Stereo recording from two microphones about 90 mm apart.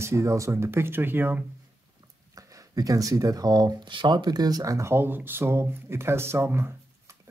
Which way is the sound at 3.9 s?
60° right (ahead or behind).